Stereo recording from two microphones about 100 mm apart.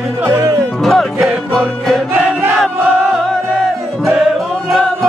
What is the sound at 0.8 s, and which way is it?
Music, centre (ahead or behind).